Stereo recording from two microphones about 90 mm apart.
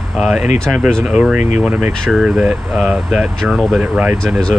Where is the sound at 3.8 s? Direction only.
15° right (ahead or behind).